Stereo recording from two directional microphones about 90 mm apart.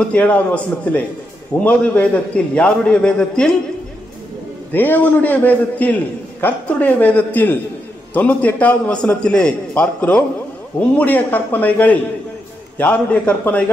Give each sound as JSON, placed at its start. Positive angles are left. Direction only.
{"t": 0.1, "sound": "a man's voice", "side_deg": 15}
{"t": 4.7, "sound": "a man's voice", "side_deg": 20}